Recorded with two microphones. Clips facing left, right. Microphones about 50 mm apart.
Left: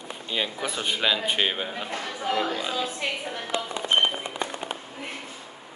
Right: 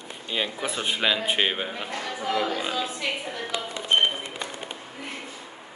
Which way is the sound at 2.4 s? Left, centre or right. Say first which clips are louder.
Even; centre.